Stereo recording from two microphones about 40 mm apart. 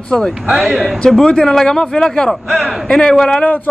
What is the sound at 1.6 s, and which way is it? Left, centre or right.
A man's voice, centre.